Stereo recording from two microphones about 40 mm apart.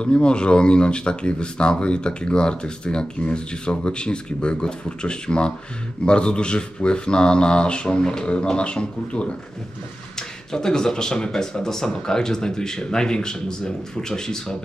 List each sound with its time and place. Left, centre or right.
0.0 s speech: left
10.1 s speech: centre